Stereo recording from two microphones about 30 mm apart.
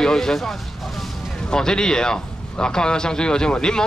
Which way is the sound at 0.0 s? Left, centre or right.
Centre.